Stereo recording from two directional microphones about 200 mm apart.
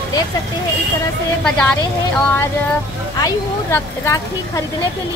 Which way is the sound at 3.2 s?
15° left (ahead or behind).